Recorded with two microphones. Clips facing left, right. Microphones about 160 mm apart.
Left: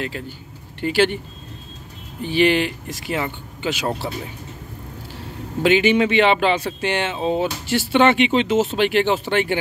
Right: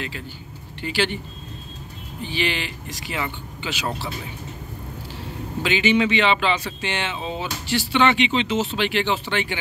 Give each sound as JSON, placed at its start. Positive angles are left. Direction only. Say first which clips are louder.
{"t": 0.7, "sound": "speech", "louder": "left 6 dB", "side_deg": 50}
{"t": 2.2, "sound": "speech", "louder": "left 9 dB", "side_deg": 50}
{"t": 5.6, "sound": "speech", "louder": "left 4 dB", "side_deg": 55}